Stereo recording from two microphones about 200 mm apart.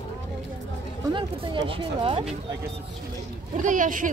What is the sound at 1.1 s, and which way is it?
Speech, 25° right (ahead or behind).